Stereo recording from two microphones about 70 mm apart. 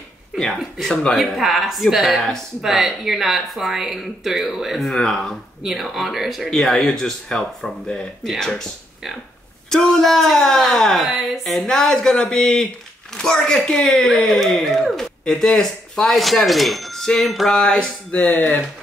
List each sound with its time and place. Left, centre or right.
0.4 s speech: centre
4.9 s a woman's voice: centre
5.6 s speech: centre
9.7 s a woman's voice: centre